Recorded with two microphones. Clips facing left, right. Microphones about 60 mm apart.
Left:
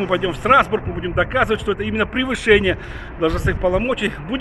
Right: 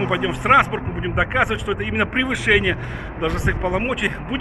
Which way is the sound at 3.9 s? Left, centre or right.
Centre.